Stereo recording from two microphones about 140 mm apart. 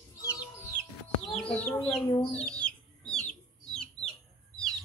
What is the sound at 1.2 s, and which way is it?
Speech, centre (ahead or behind).